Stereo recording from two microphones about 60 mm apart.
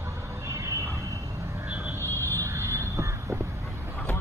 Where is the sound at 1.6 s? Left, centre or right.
Right.